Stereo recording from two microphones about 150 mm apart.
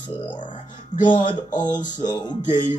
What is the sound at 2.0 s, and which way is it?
Speech, 30° left (ahead or behind).